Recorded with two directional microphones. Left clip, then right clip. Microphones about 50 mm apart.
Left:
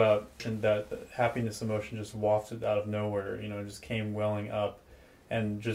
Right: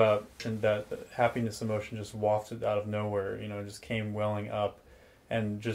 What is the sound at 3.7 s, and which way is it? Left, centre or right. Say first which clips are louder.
Speech: even; right.